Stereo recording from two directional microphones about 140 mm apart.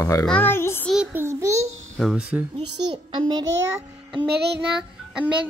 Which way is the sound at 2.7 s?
35° right (ahead or behind).